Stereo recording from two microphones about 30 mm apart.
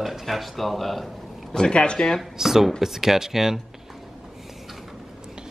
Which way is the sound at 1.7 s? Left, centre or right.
Left.